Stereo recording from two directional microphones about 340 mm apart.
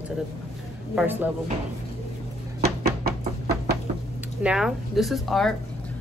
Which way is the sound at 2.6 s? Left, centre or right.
Right.